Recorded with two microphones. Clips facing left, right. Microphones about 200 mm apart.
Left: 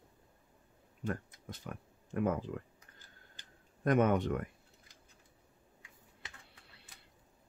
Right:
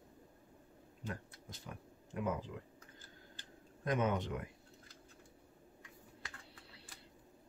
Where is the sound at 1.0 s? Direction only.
55° left (ahead or behind).